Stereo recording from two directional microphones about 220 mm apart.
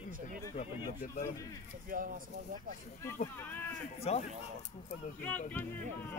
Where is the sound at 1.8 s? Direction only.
40° right (ahead or behind).